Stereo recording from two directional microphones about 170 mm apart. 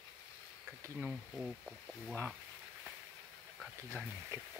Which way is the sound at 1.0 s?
Centre (ahead or behind).